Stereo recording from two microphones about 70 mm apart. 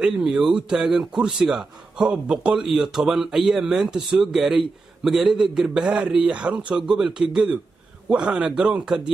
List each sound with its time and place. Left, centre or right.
0.0 s a man's voice: centre
5.9 s speech: centre